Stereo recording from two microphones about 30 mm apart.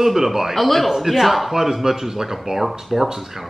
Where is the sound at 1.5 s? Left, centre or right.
Centre.